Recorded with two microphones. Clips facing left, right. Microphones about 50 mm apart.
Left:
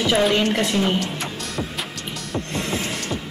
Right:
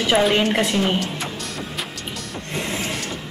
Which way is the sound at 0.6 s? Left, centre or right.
Centre.